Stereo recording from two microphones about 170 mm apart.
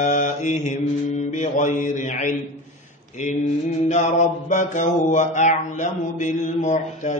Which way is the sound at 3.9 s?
45° left (ahead or behind).